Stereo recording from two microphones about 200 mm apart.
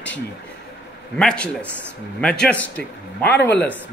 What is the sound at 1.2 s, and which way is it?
A man's voice, 5° left (ahead or behind).